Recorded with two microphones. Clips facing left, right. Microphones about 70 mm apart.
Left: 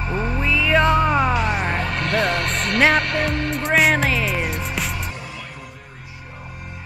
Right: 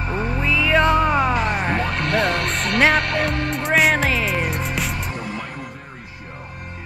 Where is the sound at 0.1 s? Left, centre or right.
Centre.